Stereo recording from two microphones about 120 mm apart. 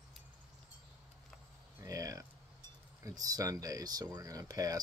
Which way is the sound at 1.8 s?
30° right (ahead or behind).